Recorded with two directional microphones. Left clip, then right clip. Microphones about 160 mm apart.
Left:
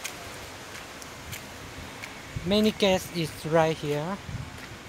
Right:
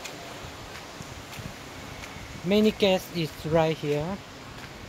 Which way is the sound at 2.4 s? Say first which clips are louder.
Right 1 dB; 10° right (ahead or behind).